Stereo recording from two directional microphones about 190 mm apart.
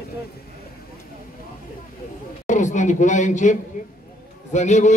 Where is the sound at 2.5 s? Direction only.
40° left (ahead or behind).